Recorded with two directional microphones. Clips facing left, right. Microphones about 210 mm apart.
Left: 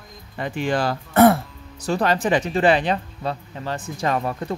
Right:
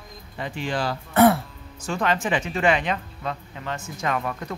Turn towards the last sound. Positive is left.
turn(degrees=30)  # may be behind; listen again after turning